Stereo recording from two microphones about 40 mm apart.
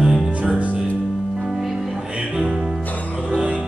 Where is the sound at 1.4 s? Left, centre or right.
Centre.